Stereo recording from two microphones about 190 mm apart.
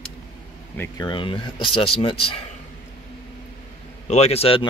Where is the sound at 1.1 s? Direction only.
25° left (ahead or behind).